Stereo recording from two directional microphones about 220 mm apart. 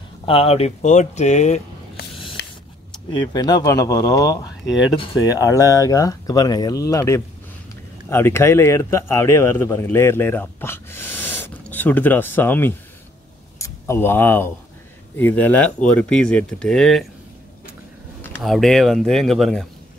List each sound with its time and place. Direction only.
0.2 s speech: 25° left (ahead or behind)
2.4 s a sound: 50° left (ahead or behind)
3.1 s speech: 20° left (ahead or behind); by 17.1 s centre (ahead or behind)
18.2 s speech: centre (ahead or behind)